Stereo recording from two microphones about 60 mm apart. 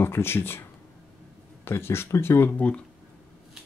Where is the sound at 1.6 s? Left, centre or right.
Left.